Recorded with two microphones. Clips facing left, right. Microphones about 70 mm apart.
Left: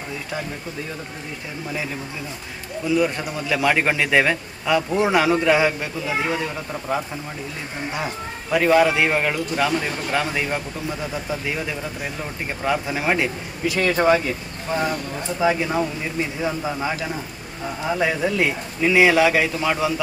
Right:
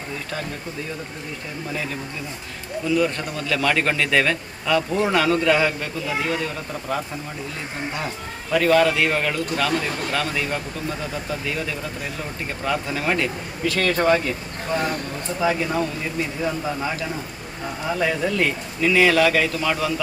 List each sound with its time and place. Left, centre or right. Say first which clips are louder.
2.9 s a man's voice: left 1 dB; centre